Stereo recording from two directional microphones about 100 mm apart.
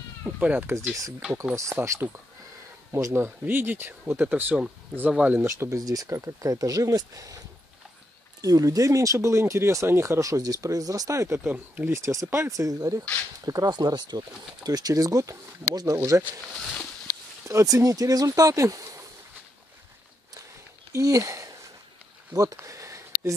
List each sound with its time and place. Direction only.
0.2 s speech: 15° right (ahead or behind)
5.8 s speech: 35° right (ahead or behind)
11.5 s speech: 15° right (ahead or behind)
11.9 s speech: 30° right (ahead or behind)
17.4 s speech: 30° right (ahead or behind)
20.9 s speech: 35° right (ahead or behind)
22.3 s a sound: 35° right (ahead or behind)